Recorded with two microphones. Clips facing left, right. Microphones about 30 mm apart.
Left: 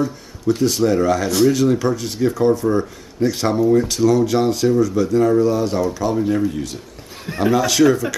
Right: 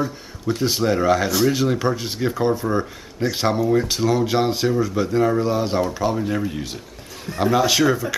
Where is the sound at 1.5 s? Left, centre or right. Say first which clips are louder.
Left 3 dB; centre.